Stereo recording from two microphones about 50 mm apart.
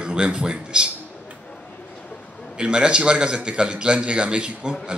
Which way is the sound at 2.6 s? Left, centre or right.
Centre.